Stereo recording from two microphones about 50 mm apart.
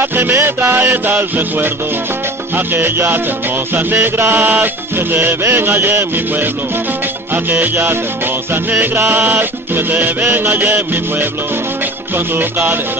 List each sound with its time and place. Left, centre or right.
0.0 s music: right
7.6 s music: right
12.4 s music: right